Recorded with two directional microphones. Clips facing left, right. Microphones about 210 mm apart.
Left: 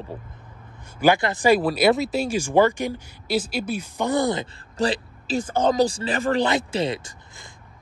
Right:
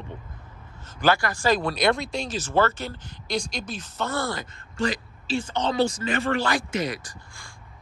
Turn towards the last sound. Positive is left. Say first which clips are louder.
# left 1 dB
turn(degrees=25)  # may be behind; listen again after turning